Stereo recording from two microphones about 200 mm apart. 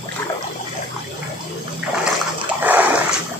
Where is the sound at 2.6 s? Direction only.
10° right (ahead or behind).